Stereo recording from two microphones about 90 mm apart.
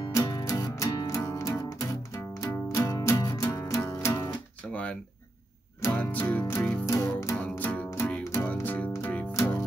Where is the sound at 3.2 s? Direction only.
45° left (ahead or behind).